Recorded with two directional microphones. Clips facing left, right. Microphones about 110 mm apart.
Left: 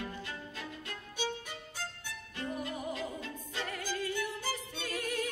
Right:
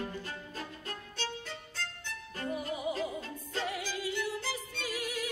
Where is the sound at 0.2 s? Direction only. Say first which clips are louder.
Right 1 dB; 40° right (ahead or behind).